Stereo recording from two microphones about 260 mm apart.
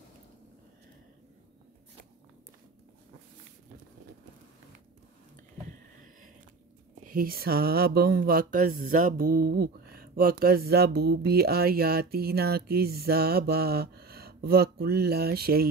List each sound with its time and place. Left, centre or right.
7.1 s speech: right